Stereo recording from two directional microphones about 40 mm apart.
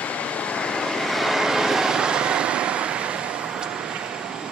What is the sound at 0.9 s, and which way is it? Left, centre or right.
Vehicle, centre.